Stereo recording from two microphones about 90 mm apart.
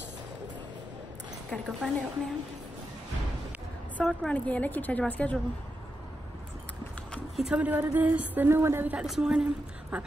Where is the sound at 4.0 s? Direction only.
10° left (ahead or behind).